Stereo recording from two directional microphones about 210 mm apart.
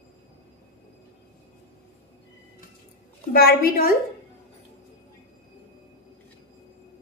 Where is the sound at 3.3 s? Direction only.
45° left (ahead or behind).